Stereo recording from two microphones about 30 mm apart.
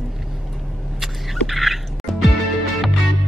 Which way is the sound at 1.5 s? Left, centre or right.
Centre.